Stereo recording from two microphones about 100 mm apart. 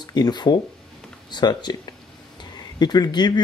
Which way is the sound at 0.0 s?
45° left (ahead or behind).